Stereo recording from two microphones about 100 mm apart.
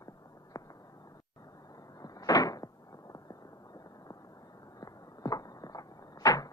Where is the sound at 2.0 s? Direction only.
40° left (ahead or behind).